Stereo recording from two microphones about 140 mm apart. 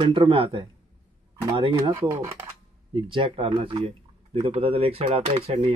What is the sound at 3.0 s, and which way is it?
Speech, 40° right (ahead or behind).